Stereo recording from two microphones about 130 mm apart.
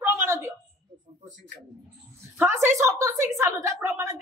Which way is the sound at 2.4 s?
20° right (ahead or behind).